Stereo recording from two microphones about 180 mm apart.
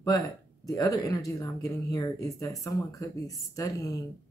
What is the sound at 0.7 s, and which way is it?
Speech, 20° left (ahead or behind).